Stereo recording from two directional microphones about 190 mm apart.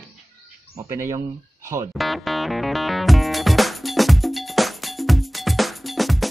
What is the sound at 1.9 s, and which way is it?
Music, centre (ahead or behind).